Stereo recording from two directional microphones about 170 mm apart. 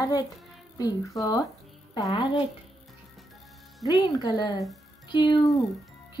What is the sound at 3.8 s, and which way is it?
A woman's voice, 20° left (ahead or behind).